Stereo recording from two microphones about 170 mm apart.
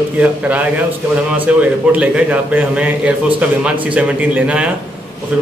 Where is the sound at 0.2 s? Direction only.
10° right (ahead or behind).